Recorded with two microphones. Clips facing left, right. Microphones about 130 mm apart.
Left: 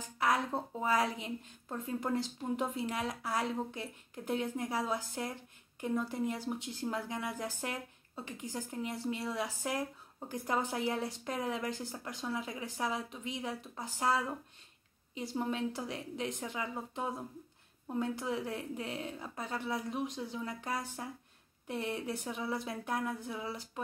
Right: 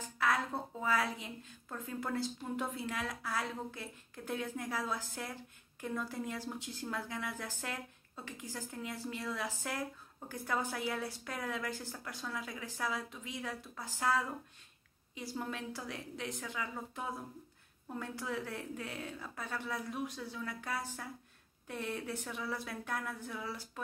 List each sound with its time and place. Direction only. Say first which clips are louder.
0.2 s speech: left 2 dB; 15° left (ahead or behind)
15.3 s speech: left 6 dB; 20° left (ahead or behind)